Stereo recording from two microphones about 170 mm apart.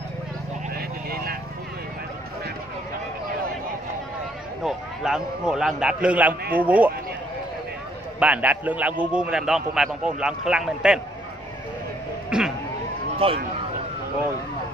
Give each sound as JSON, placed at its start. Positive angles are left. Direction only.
{"t": 0.7, "sound": "vehicle", "side_deg": -65}
{"t": 4.6, "sound": "a man's voice", "side_deg": -5}
{"t": 8.2, "sound": "a man's voice", "side_deg": -10}
{"t": 12.3, "sound": "cat", "side_deg": -5}
{"t": 13.2, "sound": "speech", "side_deg": -35}